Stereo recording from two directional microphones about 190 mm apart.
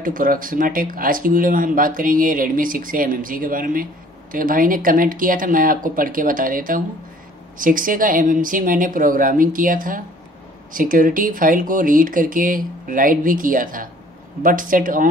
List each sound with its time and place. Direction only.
0.0 s speech: 45° right (ahead or behind)